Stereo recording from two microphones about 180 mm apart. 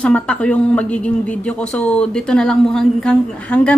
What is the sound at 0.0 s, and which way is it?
A woman's voice, 5° left (ahead or behind).